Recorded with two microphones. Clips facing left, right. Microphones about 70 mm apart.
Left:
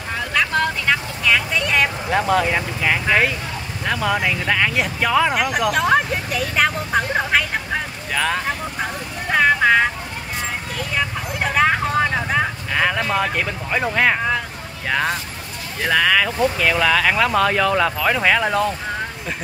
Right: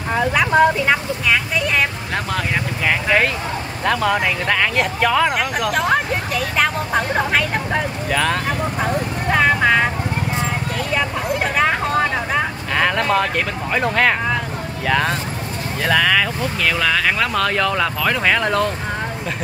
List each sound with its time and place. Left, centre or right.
0.3 s speech: centre
11.0 s vehicle: centre
14.9 s speech: centre